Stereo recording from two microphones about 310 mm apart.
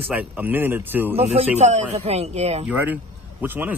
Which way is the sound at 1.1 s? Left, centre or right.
Centre.